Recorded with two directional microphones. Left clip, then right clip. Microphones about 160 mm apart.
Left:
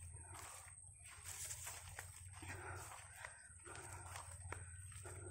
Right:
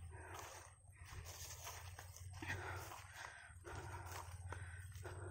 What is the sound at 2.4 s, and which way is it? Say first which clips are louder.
Dog: right 5 dB; 25° right (ahead or behind).